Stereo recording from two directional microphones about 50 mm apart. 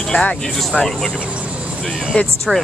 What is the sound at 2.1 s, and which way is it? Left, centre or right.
Speech, left.